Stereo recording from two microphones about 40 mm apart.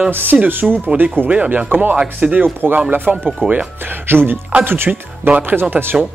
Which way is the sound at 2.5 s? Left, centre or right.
Right.